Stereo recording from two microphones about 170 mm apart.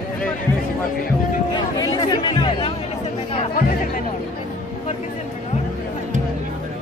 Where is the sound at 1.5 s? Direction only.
20° left (ahead or behind).